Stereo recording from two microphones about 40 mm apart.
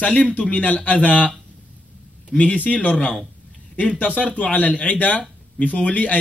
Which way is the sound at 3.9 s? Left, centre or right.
Left.